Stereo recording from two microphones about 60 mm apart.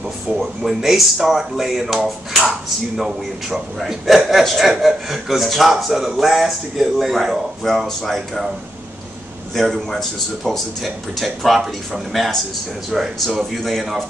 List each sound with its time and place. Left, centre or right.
0.4 s a man's voice: centre
9.6 s a man's voice: centre